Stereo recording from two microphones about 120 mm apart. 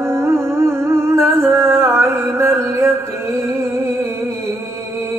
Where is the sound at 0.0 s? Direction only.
20° right (ahead or behind).